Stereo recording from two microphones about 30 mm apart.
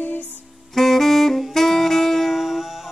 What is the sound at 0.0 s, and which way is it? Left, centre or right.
Music, left.